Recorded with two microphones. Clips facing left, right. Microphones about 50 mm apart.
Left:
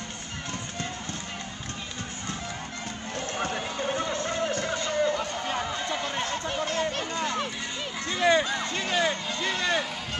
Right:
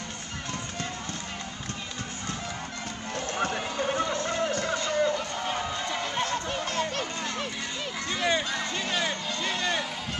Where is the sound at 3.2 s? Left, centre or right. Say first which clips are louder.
Right 1 dB; right.